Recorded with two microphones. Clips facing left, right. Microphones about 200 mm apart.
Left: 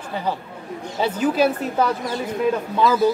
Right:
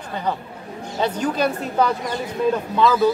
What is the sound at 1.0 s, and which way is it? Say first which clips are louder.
Speech: left 2 dB; 5° left (ahead or behind).